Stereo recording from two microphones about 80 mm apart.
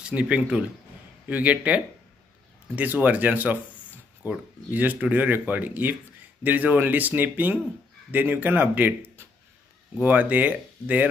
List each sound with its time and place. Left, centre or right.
0.0 s speech: centre